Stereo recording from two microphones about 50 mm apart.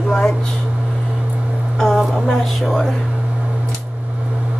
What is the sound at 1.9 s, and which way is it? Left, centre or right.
Music, centre.